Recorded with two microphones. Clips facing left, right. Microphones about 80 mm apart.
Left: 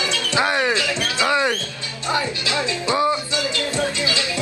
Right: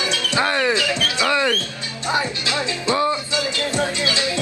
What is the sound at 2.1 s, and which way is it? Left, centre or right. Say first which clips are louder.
Music: even; right.